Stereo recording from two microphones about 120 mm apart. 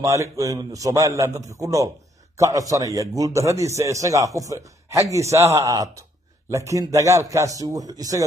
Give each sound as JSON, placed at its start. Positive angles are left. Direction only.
{"t": 0.0, "sound": "a man's voice", "side_deg": -25}